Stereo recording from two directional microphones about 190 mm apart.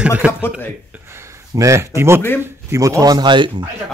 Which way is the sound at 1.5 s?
15° right (ahead or behind).